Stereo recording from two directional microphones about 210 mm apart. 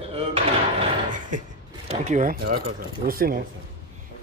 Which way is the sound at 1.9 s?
35° right (ahead or behind).